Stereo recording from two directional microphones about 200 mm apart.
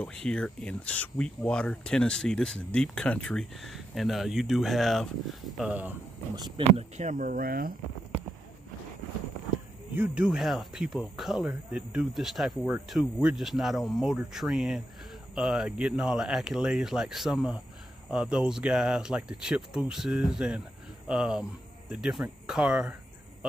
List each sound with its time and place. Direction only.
0.0 s speech: 5° left (ahead or behind)
6.3 s speech: 20° right (ahead or behind)
6.8 s speech: 35° right (ahead or behind)
9.9 s speech: 5° right (ahead or behind)